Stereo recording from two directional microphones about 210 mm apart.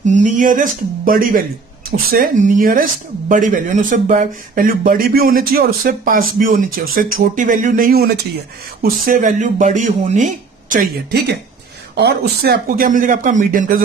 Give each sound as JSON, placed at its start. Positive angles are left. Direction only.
{"t": 0.0, "sound": "speech", "side_deg": -35}